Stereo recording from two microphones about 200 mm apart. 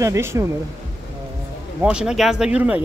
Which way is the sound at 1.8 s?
5° right (ahead or behind).